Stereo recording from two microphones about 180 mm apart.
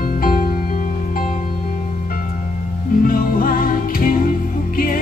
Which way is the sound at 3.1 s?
50° left (ahead or behind).